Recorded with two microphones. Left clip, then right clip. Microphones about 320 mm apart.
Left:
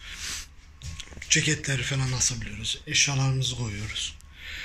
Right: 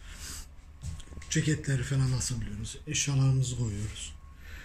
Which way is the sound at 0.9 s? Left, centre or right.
Centre.